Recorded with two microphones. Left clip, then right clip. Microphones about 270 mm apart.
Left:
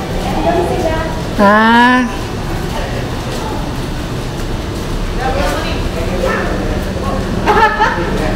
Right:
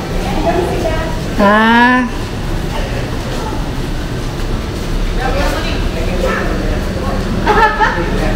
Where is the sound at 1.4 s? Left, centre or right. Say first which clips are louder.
Left 1 dB; centre.